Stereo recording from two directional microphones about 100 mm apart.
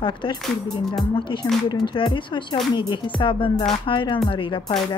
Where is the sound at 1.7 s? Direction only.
40° left (ahead or behind).